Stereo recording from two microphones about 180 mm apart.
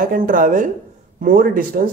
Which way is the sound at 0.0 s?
50° right (ahead or behind).